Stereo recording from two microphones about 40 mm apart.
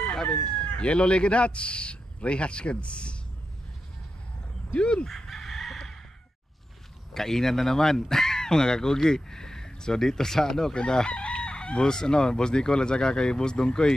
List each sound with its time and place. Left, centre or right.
0.1 s chicken: centre
0.4 s chicken: left
4.7 s chicken: left
5.0 s chicken: centre
7.2 s speech: centre
10.9 s chicken: centre